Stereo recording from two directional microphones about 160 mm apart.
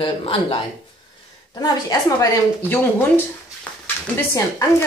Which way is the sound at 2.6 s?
15° left (ahead or behind).